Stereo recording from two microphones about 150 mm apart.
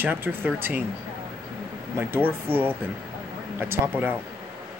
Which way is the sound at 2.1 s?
15° right (ahead or behind).